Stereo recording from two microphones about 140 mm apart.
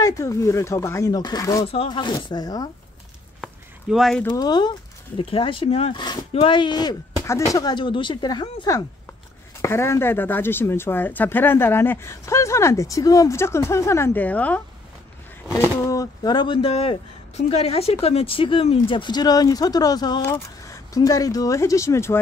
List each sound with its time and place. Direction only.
0.0 s speech: 20° left (ahead or behind)
1.7 s speech: 40° left (ahead or behind)
3.9 s speech: centre (ahead or behind)
4.3 s speech: 30° left (ahead or behind)